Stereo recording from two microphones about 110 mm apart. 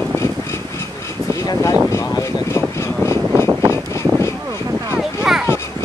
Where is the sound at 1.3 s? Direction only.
30° left (ahead or behind).